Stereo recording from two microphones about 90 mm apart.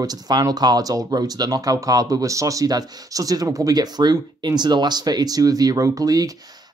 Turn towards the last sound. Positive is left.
turn(degrees=-45)  # may be behind; listen again after turning